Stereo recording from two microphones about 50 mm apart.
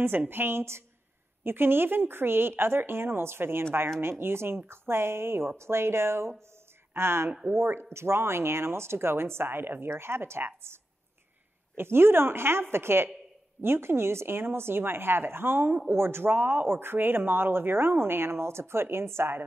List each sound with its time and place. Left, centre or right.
0.3 s speech: right
9.8 s speech: right
16.3 s speech: right